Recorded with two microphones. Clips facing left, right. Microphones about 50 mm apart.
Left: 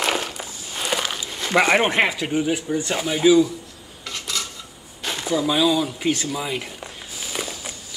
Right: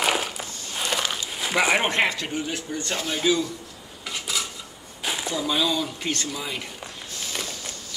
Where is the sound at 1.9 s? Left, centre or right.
Centre.